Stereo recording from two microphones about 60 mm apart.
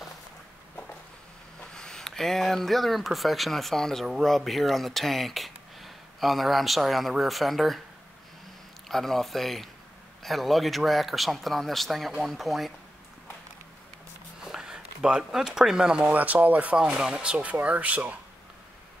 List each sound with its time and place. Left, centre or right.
1.7 s speech: centre
8.8 s speech: centre
14.4 s speech: centre
16.1 s speech: right